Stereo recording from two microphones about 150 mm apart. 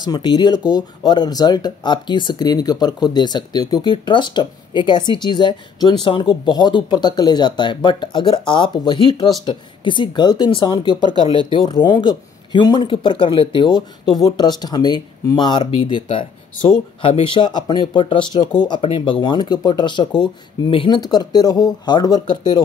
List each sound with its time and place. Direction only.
0.0 s speech: 30° left (ahead or behind)